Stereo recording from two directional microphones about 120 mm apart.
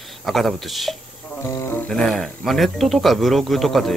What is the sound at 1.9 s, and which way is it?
Speech, 5° left (ahead or behind).